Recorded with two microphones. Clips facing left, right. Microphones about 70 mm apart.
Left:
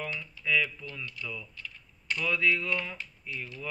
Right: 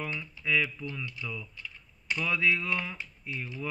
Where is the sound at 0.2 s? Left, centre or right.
Centre.